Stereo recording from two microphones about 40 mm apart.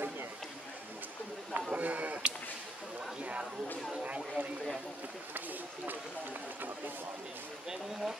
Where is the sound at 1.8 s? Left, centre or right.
Right.